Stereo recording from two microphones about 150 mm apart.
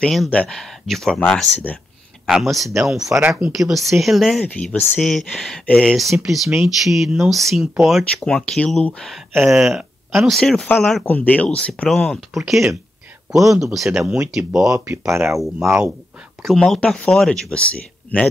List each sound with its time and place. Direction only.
0.0 s speech: 5° left (ahead or behind)
3.1 s speech: 10° right (ahead or behind)
11.1 s speech: 10° left (ahead or behind)
13.9 s speech: 5° right (ahead or behind)
14.7 s speech: 20° right (ahead or behind)
16.4 s speech: centre (ahead or behind)